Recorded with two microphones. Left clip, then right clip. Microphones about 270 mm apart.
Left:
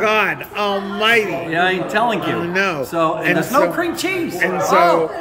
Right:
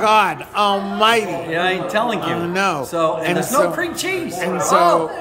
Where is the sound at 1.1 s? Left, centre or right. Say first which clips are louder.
Left 2 dB; centre.